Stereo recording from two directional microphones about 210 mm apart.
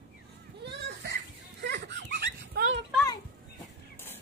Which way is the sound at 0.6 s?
55° right (ahead or behind).